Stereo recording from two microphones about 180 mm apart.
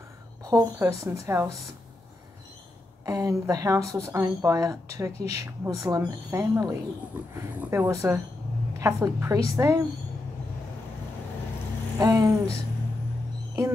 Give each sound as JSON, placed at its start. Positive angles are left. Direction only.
{"t": 0.4, "sound": "speech", "side_deg": -20}
{"t": 3.1, "sound": "a woman's voice", "side_deg": -20}
{"t": 12.0, "sound": "a woman's voice", "side_deg": -20}